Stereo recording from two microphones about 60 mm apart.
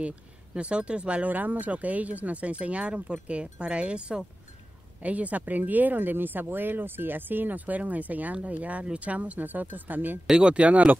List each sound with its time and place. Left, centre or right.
0.6 s speech: centre
10.3 s speech: centre